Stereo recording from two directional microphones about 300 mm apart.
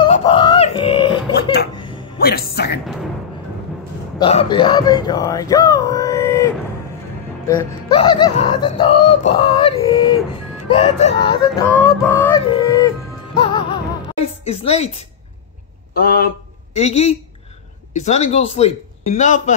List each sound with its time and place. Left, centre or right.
0.0 s a sound: centre
1.8 s music: centre
2.1 s speech: left
4.2 s speech: centre
13.4 s music: centre
14.2 s a woman's voice: left
15.9 s a man's voice: left